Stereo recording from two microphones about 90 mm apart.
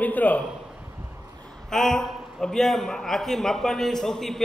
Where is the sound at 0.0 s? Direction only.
20° left (ahead or behind).